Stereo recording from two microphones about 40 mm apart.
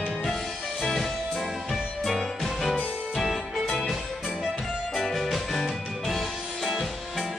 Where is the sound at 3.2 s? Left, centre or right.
Centre.